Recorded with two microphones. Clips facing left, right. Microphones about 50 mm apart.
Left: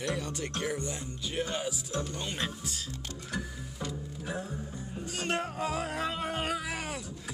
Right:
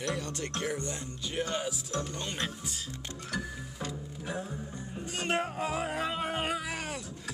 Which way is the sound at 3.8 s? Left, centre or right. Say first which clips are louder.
Left 2 dB; centre.